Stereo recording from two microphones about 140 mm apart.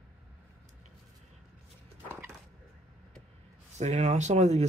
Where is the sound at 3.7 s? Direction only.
55° right (ahead or behind).